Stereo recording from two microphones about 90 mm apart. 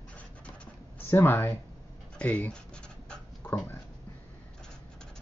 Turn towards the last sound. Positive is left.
turn(degrees=20)  # may be behind; listen again after turning